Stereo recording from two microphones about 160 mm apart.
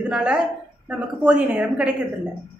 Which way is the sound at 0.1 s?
5° right (ahead or behind).